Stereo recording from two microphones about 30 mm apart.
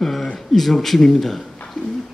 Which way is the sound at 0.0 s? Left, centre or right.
Centre.